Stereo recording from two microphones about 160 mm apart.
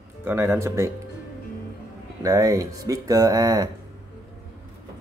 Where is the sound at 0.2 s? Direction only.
15° right (ahead or behind).